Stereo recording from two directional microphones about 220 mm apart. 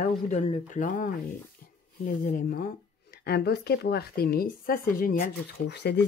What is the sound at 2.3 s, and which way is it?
Speech, 40° left (ahead or behind).